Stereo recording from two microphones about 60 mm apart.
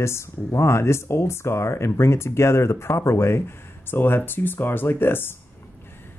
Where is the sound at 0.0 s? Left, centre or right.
Left.